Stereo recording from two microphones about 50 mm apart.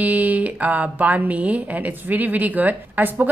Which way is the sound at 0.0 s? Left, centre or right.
Right.